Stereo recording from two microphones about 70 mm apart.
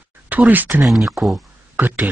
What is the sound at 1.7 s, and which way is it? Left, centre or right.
Speech, right.